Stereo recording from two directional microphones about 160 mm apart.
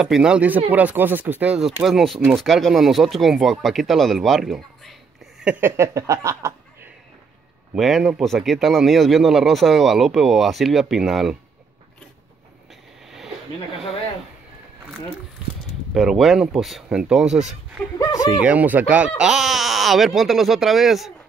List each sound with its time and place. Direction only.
0.0 s speech: 5° right (ahead or behind)
7.7 s speech: centre (ahead or behind)
15.9 s speech: centre (ahead or behind)
17.9 s speech: 20° left (ahead or behind)
18.4 s speech: 10° right (ahead or behind)